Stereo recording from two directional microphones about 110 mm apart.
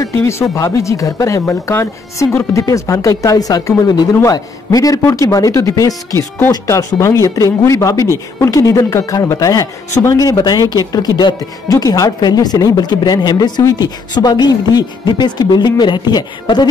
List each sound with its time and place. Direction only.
0.0 s speech: 25° left (ahead or behind)